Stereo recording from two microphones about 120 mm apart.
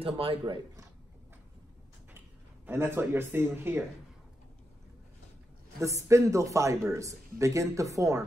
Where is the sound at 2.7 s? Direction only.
20° right (ahead or behind).